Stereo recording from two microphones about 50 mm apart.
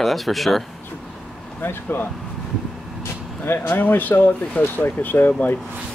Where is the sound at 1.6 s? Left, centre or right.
Left.